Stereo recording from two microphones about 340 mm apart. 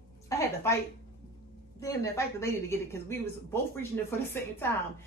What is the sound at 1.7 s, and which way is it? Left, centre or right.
Speech, centre.